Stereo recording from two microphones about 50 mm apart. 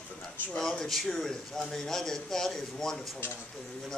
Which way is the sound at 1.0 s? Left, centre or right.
Centre.